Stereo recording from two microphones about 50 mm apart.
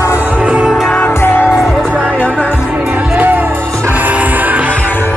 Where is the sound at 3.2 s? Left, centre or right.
Right.